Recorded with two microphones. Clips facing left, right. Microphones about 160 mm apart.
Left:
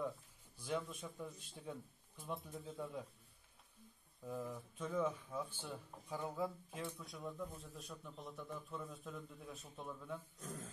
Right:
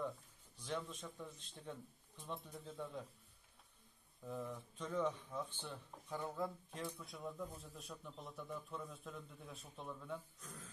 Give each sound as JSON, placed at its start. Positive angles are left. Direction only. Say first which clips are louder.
{"t": 0.6, "sound": "a man's voice", "louder": "left 2 dB", "side_deg": 10}
{"t": 4.2, "sound": "a man's voice", "louder": "left 1 dB", "side_deg": 0}
{"t": 10.4, "sound": "speech", "louder": "left 7 dB", "side_deg": 40}